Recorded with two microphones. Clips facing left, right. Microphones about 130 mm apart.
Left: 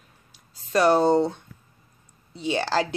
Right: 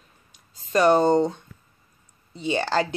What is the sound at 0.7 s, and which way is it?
Speech, 5° left (ahead or behind).